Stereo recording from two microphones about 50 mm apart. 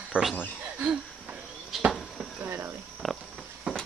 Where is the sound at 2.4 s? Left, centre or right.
Right.